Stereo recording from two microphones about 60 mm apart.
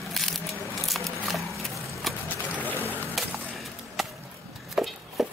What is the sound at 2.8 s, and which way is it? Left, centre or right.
Music, left.